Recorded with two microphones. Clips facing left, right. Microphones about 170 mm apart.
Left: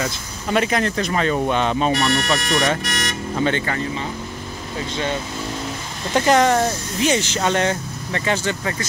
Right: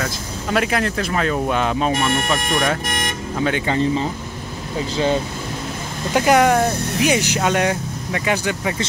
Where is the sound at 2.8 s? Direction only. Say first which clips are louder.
Right 1 dB; 50° right (ahead or behind).